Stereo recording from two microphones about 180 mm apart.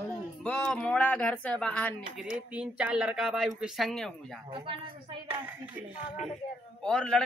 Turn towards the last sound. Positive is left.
turn(degrees=5)  # may be behind; listen again after turning